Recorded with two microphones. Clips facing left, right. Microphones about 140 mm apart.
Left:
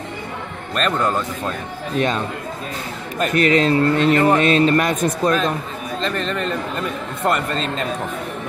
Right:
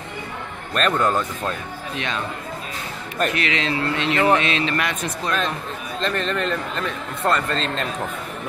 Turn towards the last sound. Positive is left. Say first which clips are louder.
# left 1 dB
turn(degrees=5)  # may be behind; listen again after turning